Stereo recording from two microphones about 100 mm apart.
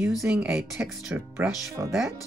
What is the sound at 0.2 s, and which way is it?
Speech, 20° right (ahead or behind).